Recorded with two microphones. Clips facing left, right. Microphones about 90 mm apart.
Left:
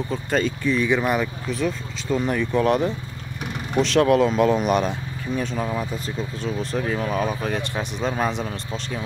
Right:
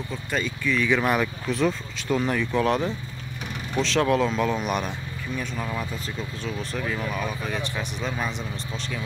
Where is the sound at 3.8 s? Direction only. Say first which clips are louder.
Left 5 dB; 55° left (ahead or behind).